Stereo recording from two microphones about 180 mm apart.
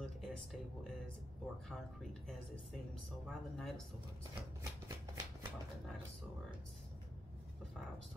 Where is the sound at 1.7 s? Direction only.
Centre (ahead or behind).